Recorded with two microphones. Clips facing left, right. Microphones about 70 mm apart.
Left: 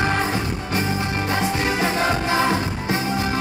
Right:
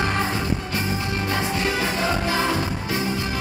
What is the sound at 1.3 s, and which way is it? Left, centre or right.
Music, left.